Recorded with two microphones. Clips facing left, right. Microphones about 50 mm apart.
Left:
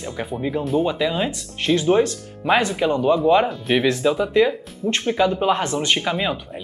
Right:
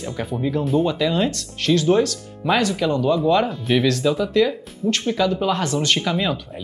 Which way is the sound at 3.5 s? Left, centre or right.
Centre.